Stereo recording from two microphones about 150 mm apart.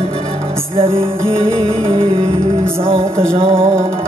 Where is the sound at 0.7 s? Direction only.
40° right (ahead or behind).